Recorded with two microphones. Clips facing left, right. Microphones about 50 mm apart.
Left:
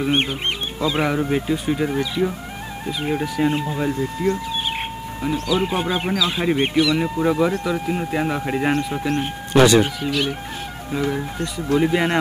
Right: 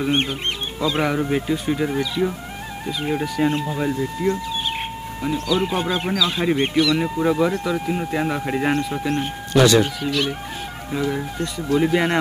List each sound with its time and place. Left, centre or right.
0.7 s speech: centre
9.5 s speech: left
10.0 s speech: centre
11.8 s speech: centre